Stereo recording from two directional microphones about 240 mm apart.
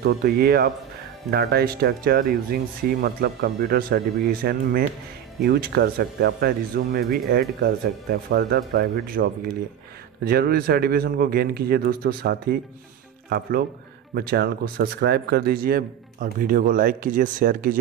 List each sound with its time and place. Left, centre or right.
0.0 s speech: right